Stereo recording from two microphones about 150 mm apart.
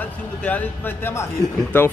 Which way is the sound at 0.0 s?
10° left (ahead or behind).